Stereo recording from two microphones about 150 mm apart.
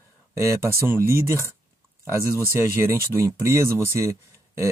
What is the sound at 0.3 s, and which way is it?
Speech, 20° right (ahead or behind).